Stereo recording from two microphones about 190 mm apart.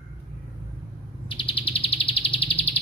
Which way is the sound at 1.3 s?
25° left (ahead or behind).